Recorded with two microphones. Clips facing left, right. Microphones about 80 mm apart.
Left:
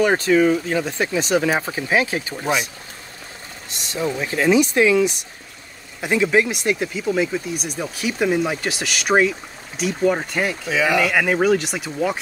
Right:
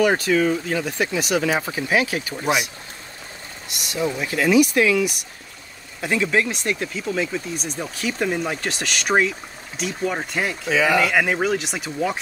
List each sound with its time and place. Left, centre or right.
0.0 s speech: left
3.6 s speech: left; by 10.6 s centre
10.7 s speech: right
11.0 s speech: centre